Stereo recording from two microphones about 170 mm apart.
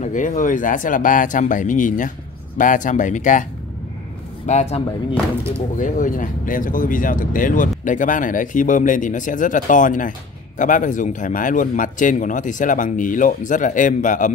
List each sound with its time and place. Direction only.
0.0 s a man's voice: 45° left (ahead or behind)
4.5 s speech: 40° left (ahead or behind)
5.8 s a man's voice: 50° left (ahead or behind)